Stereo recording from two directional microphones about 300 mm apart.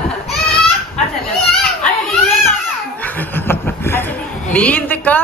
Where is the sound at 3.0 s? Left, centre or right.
Centre.